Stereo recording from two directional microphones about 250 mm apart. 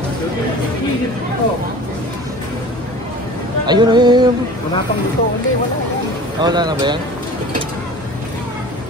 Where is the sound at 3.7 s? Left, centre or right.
Centre.